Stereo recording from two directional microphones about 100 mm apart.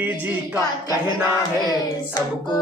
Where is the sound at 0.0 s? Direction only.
20° right (ahead or behind).